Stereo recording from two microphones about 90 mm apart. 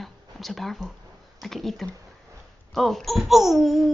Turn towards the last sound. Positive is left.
turn(degrees=0)  # may be behind; listen again after turning